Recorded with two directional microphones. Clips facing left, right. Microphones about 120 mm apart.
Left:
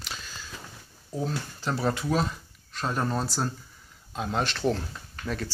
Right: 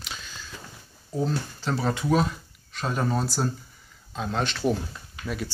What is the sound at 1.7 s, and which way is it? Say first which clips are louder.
Speech: right 2 dB; 5° left (ahead or behind).